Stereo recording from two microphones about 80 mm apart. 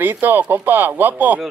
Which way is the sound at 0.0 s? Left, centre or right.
Right.